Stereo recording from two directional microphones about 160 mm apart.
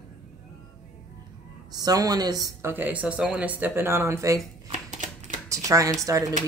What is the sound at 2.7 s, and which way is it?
Speech, 10° right (ahead or behind).